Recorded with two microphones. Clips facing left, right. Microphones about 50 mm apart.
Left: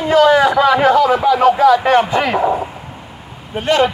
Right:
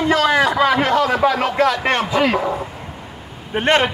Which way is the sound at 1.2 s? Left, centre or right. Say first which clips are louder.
Left 5 dB; right.